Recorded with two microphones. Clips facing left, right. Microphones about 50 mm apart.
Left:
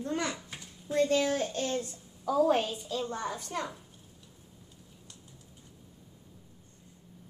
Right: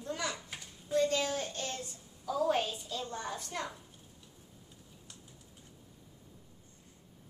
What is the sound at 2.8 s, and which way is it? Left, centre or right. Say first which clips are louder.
Speech: left 5 dB; left.